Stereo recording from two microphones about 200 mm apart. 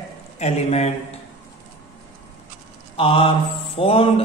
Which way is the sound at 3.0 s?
30° left (ahead or behind).